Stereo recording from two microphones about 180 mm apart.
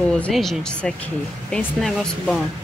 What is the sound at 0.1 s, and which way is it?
Speech, 5° left (ahead or behind).